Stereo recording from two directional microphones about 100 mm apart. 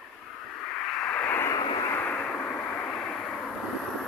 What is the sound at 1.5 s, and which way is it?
Vehicle, 50° left (ahead or behind).